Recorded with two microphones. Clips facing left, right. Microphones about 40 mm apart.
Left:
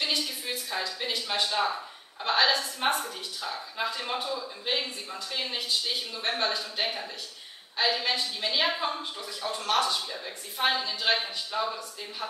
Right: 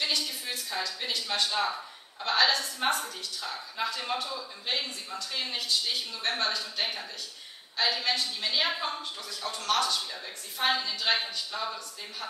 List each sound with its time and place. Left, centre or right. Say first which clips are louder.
0.1 s a woman's voice: left 1 dB; centre
6.2 s a woman's voice: left 1 dB; centre
9.0 s speech: left 2 dB; left
10.1 s a woman's voice: left 2 dB; centre